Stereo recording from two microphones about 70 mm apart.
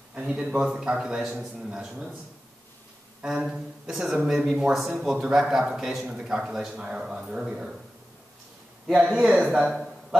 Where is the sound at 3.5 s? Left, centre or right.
Centre.